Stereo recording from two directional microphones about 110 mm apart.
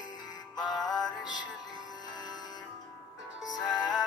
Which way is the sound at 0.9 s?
40° left (ahead or behind).